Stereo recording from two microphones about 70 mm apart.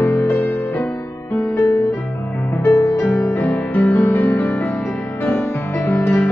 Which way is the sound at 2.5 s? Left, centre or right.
Left.